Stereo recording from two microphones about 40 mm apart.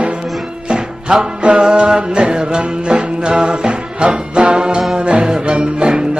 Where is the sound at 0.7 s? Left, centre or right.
Centre.